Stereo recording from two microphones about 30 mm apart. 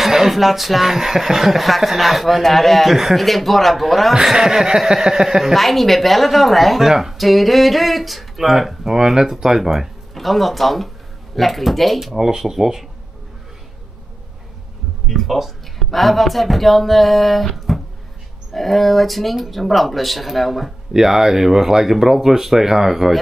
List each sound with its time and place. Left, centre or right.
0.0 s speech: centre
4.1 s speech: centre
5.5 s speech: centre
6.8 s speech: centre
7.2 s speech: centre
10.1 s speech: centre
12.2 s speech: centre
15.0 s speech: centre
20.9 s speech: centre